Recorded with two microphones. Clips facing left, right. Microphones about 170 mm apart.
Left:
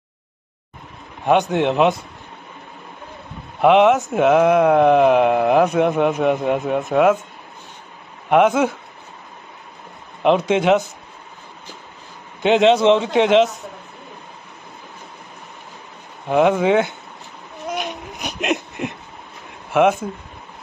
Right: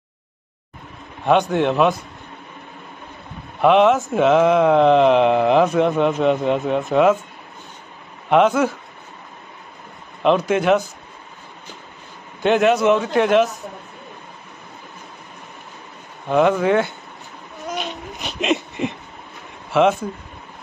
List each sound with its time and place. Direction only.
1.2 s speech: 15° left (ahead or behind)
3.6 s speech: 15° left (ahead or behind)
8.3 s speech: 10° left (ahead or behind)
10.2 s a man's voice: 20° left (ahead or behind)
12.4 s a man's voice: 25° left (ahead or behind)
16.3 s speech: 10° left (ahead or behind)
17.7 s a sound: 15° left (ahead or behind)
19.7 s speech: 10° left (ahead or behind)